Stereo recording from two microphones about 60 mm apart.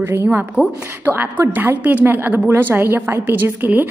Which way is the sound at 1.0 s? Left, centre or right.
Right.